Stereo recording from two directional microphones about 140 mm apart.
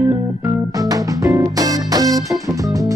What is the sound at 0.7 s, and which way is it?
Music, 25° right (ahead or behind).